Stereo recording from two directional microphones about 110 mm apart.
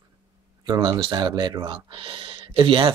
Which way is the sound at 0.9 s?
40° right (ahead or behind).